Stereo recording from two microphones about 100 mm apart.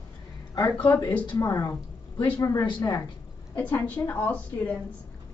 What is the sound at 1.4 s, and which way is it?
Speech, 30° left (ahead or behind).